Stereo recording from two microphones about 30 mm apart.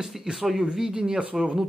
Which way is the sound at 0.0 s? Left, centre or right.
Centre.